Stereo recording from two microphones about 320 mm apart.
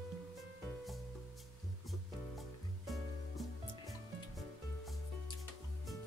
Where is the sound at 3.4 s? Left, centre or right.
Centre.